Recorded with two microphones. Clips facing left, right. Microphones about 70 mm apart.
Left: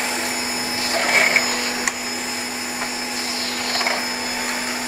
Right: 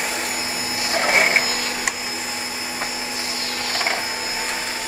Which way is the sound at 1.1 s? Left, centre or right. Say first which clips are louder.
Even; centre.